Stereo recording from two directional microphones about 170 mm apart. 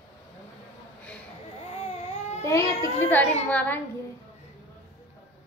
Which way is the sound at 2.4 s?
15° left (ahead or behind).